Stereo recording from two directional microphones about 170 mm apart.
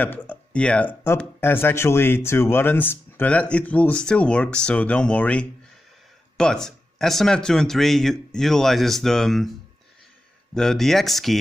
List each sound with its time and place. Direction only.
0.0 s speech: 10° left (ahead or behind)
10.5 s speech: 5° left (ahead or behind)